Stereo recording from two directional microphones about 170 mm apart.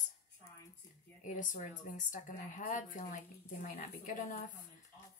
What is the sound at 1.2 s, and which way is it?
Speech, 50° left (ahead or behind).